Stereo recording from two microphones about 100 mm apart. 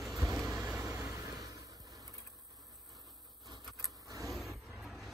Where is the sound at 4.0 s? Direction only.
35° right (ahead or behind).